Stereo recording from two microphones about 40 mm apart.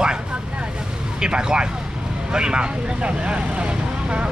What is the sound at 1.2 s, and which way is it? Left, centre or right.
Speech, right.